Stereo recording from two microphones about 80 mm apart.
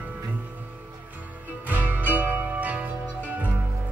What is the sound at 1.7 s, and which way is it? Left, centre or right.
Music, centre.